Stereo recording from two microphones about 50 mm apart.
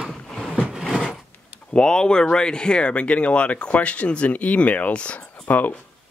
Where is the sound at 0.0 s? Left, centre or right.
Centre.